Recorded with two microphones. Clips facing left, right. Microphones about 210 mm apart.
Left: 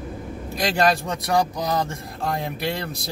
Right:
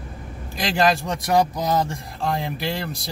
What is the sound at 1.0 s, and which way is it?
Speech, 25° right (ahead or behind).